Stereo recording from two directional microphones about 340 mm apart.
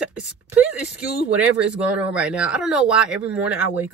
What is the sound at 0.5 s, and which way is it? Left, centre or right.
Speech, centre.